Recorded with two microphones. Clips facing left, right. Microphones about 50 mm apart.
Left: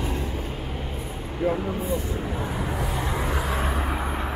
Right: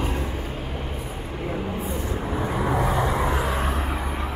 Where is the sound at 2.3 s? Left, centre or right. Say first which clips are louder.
Right 5 dB; right.